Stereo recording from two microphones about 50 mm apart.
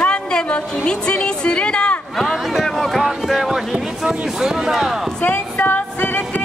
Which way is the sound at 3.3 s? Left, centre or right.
Centre.